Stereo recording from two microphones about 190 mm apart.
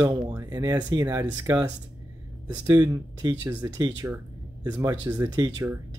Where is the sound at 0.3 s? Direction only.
20° right (ahead or behind).